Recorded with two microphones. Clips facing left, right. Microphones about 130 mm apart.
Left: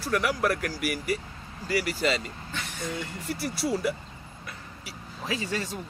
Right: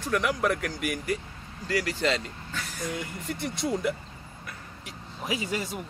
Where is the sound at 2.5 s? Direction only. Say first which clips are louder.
Right 1 dB; 25° left (ahead or behind).